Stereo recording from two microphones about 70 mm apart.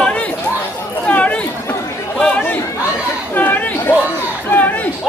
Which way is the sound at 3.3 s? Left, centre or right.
Left.